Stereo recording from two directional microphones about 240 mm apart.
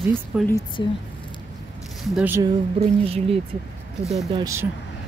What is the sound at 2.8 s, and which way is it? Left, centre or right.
Speech, right.